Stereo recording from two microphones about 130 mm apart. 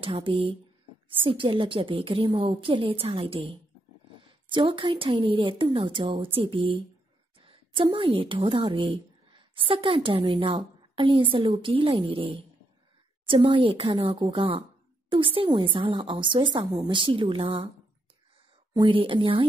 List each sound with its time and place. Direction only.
0.0 s a woman's voice: 40° right (ahead or behind)
18.7 s a woman's voice: 35° right (ahead or behind)